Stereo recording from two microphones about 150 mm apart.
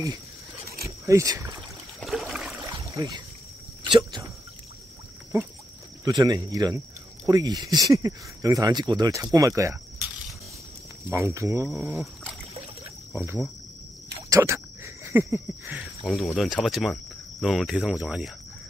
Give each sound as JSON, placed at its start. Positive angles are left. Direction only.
{"t": 0.8, "sound": "speech", "side_deg": -20}
{"t": 2.0, "sound": "a sound", "side_deg": 0}
{"t": 2.7, "sound": "rowboat", "side_deg": -25}
{"t": 3.9, "sound": "speech", "side_deg": -30}
{"t": 6.0, "sound": "speech", "side_deg": -25}
{"t": 11.1, "sound": "speech", "side_deg": -20}
{"t": 11.7, "sound": "speech", "side_deg": -5}
{"t": 13.1, "sound": "speech", "side_deg": -15}
{"t": 15.0, "sound": "a sound", "side_deg": -15}
{"t": 16.1, "sound": "speech", "side_deg": 0}